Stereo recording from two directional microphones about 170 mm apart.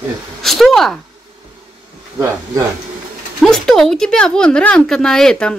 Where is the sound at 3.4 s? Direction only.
Centre (ahead or behind).